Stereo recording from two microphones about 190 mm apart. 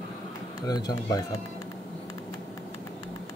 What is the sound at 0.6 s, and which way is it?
Speech, 20° left (ahead or behind).